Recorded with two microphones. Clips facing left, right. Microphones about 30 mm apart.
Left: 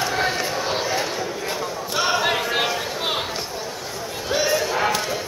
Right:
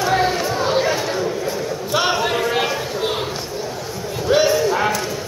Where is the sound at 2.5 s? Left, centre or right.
Centre.